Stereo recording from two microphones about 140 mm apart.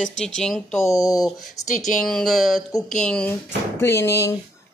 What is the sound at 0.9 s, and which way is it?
Speech, 25° left (ahead or behind).